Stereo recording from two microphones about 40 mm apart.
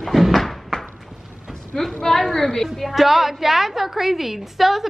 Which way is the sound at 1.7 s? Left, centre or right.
Left.